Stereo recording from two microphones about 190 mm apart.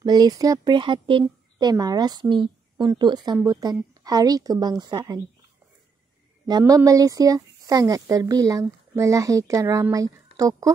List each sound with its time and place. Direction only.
0.0 s a woman's voice: 20° right (ahead or behind)
6.4 s speech: 20° right (ahead or behind)